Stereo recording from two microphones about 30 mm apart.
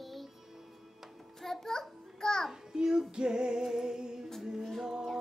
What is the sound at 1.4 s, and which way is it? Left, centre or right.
Child singing, centre.